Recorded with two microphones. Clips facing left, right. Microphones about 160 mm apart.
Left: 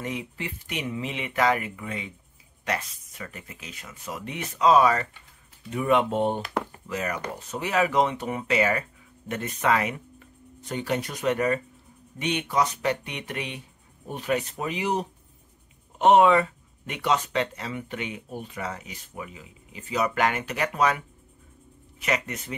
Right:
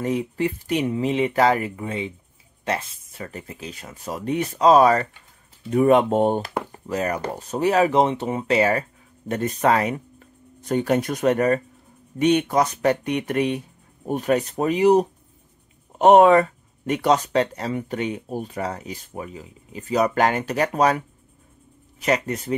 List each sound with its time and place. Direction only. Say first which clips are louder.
0.0 s speech: right 10 dB; 40° right (ahead or behind)
22.0 s speech: right 6 dB; 35° right (ahead or behind)